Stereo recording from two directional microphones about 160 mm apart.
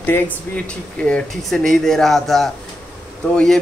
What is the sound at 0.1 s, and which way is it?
Speech, 15° left (ahead or behind).